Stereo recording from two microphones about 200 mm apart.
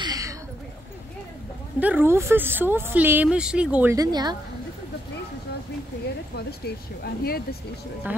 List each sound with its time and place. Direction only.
0.0 s a sound: 15° right (ahead or behind)
1.8 s speech: 10° right (ahead or behind)
6.3 s speech: 50° left (ahead or behind)